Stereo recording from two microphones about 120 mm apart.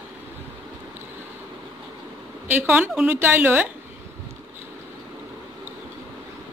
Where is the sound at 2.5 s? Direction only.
15° right (ahead or behind).